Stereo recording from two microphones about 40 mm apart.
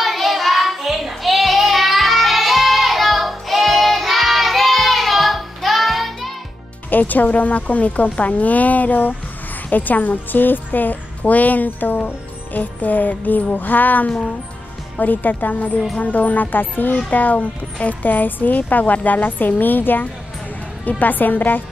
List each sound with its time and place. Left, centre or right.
0.0 s child singing: centre
6.9 s a woman's voice: left
17.4 s a woman's voice: left
18.0 s a woman's voice: left